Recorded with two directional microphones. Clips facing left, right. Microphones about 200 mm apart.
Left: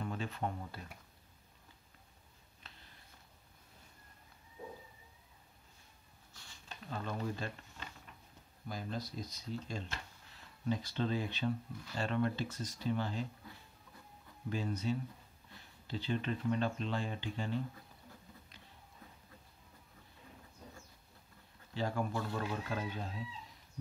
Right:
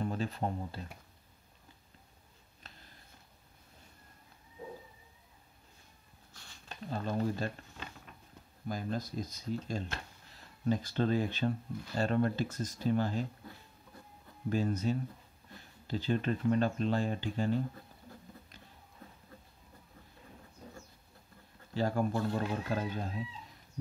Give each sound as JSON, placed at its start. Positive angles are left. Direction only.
{"t": 0.0, "sound": "speech", "side_deg": -35}
{"t": 6.9, "sound": "speech", "side_deg": -40}
{"t": 8.6, "sound": "speech", "side_deg": -50}
{"t": 14.5, "sound": "speech", "side_deg": -45}
{"t": 21.7, "sound": "speech", "side_deg": -40}